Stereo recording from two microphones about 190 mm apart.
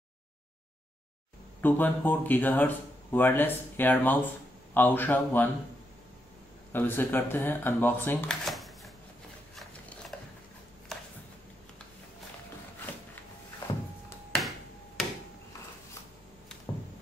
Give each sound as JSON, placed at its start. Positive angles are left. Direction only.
{"t": 1.6, "sound": "speech", "side_deg": 10}
{"t": 6.7, "sound": "speech", "side_deg": 10}
{"t": 10.1, "sound": "a sound", "side_deg": 5}